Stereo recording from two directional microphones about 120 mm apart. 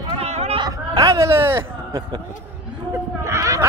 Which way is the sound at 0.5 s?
30° right (ahead or behind).